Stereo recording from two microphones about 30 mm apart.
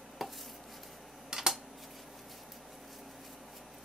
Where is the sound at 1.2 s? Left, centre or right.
Centre.